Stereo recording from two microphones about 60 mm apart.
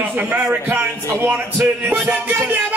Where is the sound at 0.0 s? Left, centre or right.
Right.